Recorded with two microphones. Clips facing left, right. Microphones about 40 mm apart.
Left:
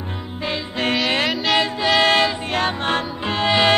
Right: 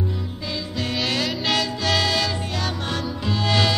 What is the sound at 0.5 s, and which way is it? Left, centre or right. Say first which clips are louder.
Music: left 6 dB; left.